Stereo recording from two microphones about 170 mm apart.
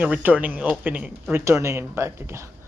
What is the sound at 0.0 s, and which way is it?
Speech, 10° right (ahead or behind).